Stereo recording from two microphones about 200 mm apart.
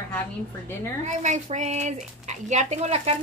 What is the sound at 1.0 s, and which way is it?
Speech, 35° right (ahead or behind).